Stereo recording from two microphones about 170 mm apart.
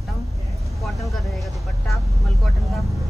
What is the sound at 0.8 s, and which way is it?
Speech, centre (ahead or behind).